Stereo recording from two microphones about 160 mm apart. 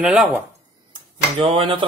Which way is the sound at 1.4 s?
35° right (ahead or behind).